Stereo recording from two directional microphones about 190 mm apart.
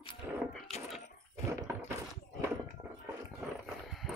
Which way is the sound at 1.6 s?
15° right (ahead or behind).